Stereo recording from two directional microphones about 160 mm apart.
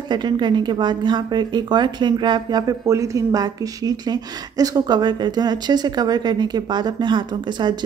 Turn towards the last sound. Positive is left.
turn(degrees=-30)  # may be behind; listen again after turning